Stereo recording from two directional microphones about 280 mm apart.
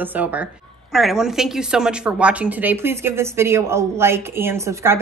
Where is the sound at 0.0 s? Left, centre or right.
Centre.